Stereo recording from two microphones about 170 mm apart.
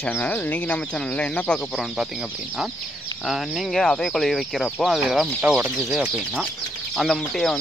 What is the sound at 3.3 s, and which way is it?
Speech, centre (ahead or behind).